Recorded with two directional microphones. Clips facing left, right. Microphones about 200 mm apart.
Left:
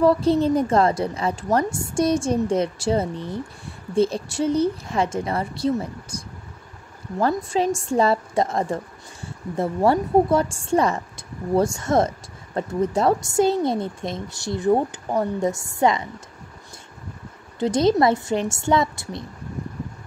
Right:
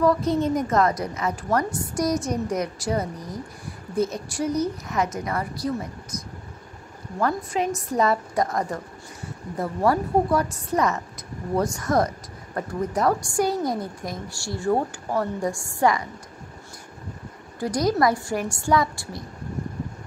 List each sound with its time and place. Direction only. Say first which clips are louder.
0.0 s a woman's voice: left 3 dB; 30° left (ahead or behind)
17.6 s a woman's voice: left 4 dB; 25° left (ahead or behind)